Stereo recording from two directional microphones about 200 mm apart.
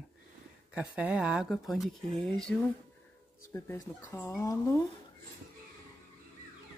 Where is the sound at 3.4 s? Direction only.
15° left (ahead or behind).